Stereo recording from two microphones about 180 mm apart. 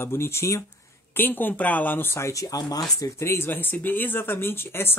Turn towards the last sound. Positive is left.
turn(degrees=10)  # may be behind; listen again after turning